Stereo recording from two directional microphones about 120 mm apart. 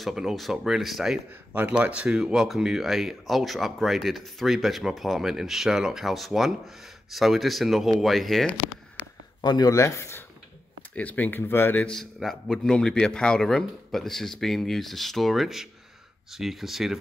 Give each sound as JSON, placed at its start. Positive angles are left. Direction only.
{"t": 0.0, "sound": "speech", "side_deg": 0}
{"t": 9.0, "sound": "a sound", "side_deg": -10}
{"t": 9.4, "sound": "speech", "side_deg": 35}